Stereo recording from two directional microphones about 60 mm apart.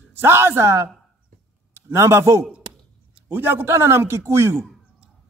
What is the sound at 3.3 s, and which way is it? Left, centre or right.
A man's voice, right.